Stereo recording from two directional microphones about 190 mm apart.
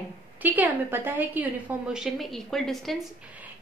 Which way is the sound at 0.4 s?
10° right (ahead or behind).